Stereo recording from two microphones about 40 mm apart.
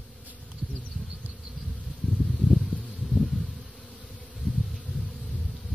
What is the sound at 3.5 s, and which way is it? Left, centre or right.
Bee, left.